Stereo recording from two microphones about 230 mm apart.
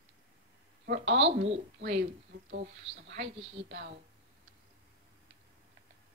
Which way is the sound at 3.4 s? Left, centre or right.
Right.